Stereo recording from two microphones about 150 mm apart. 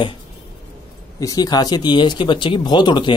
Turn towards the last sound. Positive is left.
turn(degrees=30)  # may be behind; listen again after turning